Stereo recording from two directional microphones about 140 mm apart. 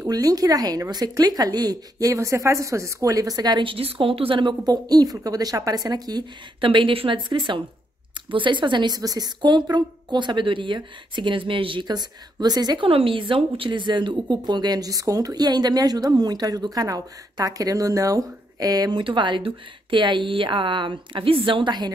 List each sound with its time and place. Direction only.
0.0 s a woman's voice: 25° right (ahead or behind)